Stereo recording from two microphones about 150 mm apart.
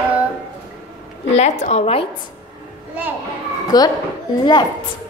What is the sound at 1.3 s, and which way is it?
Speech, 50° left (ahead or behind).